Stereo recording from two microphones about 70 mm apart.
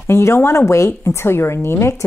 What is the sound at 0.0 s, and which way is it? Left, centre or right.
A woman's voice, left.